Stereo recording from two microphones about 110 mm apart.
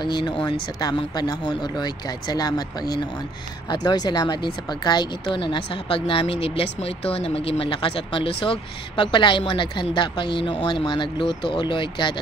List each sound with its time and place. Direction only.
0.0 s speech: 40° left (ahead or behind)